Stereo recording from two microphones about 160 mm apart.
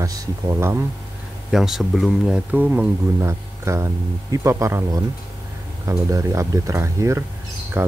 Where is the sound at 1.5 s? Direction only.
Centre (ahead or behind).